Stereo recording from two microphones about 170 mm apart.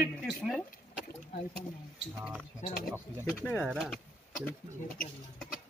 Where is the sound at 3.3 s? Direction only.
10° left (ahead or behind).